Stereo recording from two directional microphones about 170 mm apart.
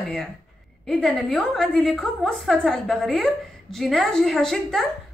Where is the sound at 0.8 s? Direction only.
Centre (ahead or behind).